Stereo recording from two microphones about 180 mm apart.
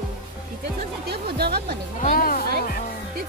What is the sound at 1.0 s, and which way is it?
Music, 60° right (ahead or behind).